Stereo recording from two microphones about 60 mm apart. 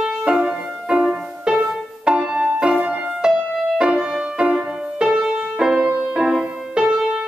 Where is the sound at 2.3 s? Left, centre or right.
Right.